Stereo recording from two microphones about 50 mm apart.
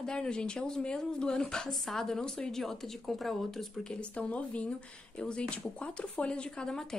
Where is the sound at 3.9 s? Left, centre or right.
Left.